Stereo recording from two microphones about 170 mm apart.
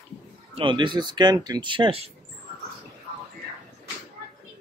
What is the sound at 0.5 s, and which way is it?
Speech, 30° right (ahead or behind).